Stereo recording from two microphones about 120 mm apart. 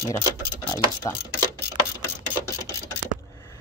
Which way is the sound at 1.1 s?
30° left (ahead or behind).